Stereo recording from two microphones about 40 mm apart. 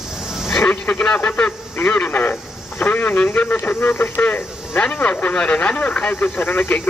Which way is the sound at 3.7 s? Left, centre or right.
Left.